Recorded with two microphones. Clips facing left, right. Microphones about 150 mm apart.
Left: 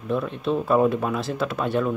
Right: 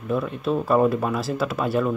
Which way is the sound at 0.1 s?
5° right (ahead or behind).